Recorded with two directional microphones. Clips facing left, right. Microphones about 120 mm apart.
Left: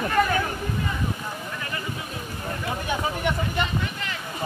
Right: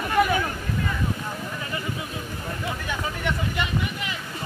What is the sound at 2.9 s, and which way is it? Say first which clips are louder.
Speech: left 4 dB; 20° left (ahead or behind).